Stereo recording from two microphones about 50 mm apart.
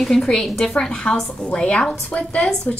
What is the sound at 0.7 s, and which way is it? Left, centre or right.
A woman's voice, centre.